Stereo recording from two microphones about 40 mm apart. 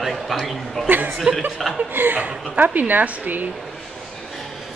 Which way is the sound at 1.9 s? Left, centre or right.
Right.